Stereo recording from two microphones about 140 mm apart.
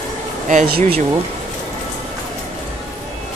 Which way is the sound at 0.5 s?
65° right (ahead or behind).